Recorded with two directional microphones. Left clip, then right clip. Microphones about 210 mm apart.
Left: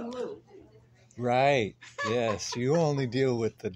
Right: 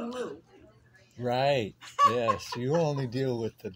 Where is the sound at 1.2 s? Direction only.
20° left (ahead or behind).